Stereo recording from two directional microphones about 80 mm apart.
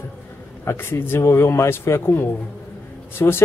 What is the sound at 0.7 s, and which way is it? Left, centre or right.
Speech, left.